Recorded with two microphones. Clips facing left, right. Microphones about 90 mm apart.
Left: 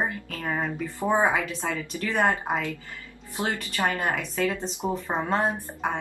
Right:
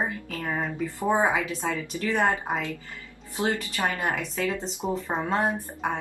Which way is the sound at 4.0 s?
20° right (ahead or behind).